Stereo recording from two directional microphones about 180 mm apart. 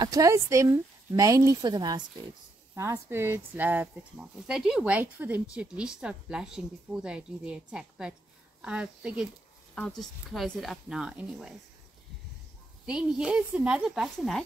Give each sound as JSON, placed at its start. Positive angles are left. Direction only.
{"t": 0.0, "sound": "speech", "side_deg": -20}
{"t": 12.8, "sound": "speech", "side_deg": -5}